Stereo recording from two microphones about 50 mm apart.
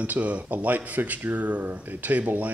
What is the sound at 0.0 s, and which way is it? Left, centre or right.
A man's voice, right.